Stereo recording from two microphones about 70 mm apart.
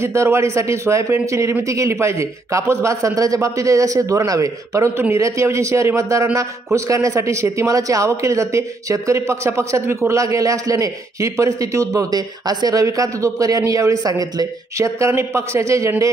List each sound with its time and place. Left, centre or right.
0.0 s a man's voice: right
12.8 s a man's voice: right